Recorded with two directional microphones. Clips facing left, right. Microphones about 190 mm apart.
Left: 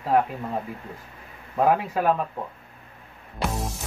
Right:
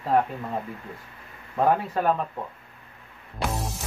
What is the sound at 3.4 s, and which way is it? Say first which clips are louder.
Music: left 1 dB; centre (ahead or behind).